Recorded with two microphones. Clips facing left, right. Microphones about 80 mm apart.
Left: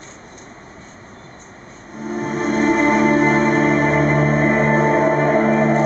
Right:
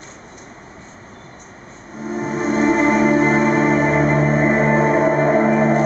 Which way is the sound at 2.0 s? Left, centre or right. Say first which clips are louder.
Even; centre.